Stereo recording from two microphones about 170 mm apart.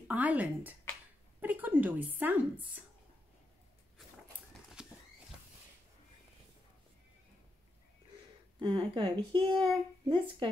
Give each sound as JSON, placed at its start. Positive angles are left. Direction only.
{"t": 0.1, "sound": "a woman's voice", "side_deg": -10}
{"t": 4.8, "sound": "horse", "side_deg": -5}
{"t": 8.5, "sound": "speech", "side_deg": -30}